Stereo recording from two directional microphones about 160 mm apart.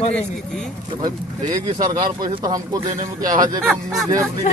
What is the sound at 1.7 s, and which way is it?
Speech, 20° right (ahead or behind).